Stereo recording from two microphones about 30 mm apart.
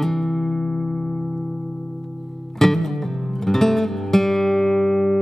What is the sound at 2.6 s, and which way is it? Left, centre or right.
Music, centre.